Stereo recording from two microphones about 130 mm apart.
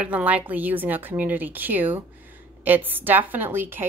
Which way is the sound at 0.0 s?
10° right (ahead or behind).